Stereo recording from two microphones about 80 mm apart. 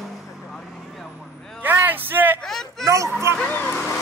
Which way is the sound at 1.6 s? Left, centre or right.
Right.